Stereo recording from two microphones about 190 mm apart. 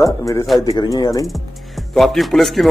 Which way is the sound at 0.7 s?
20° left (ahead or behind).